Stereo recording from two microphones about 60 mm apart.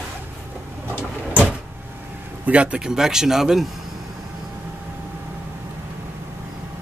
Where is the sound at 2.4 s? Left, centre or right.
Right.